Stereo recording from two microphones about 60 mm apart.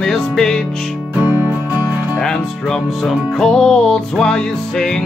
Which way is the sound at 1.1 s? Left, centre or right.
Right.